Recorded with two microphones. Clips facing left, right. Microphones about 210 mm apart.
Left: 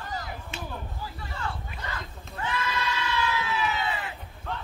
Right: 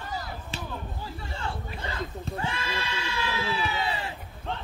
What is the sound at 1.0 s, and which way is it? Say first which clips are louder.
Goat: left 1 dB; 25° right (ahead or behind).